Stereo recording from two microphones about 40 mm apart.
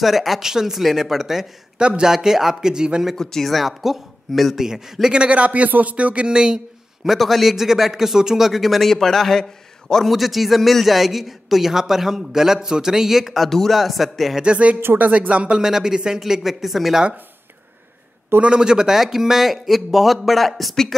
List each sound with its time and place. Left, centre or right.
0.0 s a man's voice: centre
1.8 s a man's voice: right
2.1 s a man's voice: centre
3.2 s speech: centre
3.4 s a man's voice: centre
5.1 s speech: right
6.3 s a man's voice: centre
7.1 s a man's voice: centre
8.9 s a man's voice: centre
10.0 s a man's voice: centre
14.4 s a man's voice: right
15.6 s a man's voice: centre
18.4 s a man's voice: right; by 20.7 s centre